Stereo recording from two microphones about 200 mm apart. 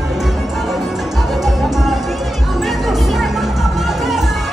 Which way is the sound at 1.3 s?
Centre (ahead or behind).